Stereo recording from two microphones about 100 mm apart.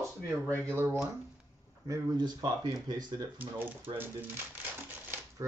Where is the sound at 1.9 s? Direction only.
40° right (ahead or behind).